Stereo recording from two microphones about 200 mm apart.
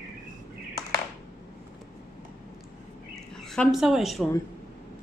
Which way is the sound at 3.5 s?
Centre (ahead or behind).